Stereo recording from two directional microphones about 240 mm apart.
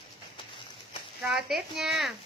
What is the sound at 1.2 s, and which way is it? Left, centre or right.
Speech, centre.